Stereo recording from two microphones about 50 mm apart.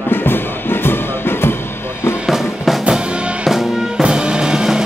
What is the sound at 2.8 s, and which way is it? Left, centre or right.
Music, centre.